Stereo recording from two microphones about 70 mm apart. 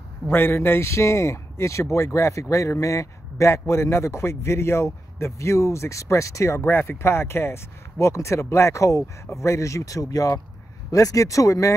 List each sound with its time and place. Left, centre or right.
0.3 s a man's voice: left